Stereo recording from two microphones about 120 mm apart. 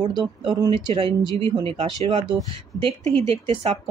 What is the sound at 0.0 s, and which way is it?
Speech, 40° right (ahead or behind).